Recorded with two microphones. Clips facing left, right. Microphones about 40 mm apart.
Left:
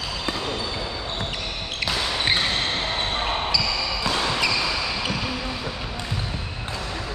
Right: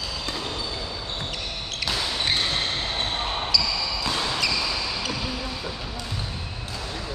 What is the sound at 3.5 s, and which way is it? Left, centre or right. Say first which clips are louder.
Basketball bounce: left 1 dB; left.